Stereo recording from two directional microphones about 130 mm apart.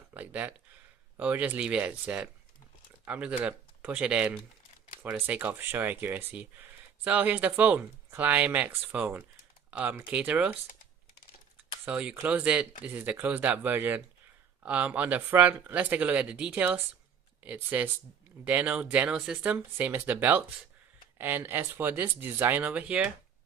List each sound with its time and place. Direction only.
0.1 s speech: 10° right (ahead or behind)
11.8 s speech: 10° right (ahead or behind)